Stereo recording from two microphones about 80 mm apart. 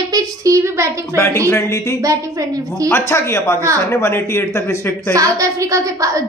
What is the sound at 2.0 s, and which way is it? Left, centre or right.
Speech, right.